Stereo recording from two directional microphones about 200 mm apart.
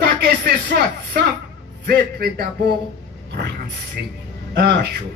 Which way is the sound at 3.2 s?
55° right (ahead or behind).